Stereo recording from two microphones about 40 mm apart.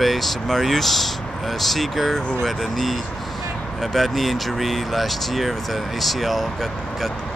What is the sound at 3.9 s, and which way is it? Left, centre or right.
Speech, centre.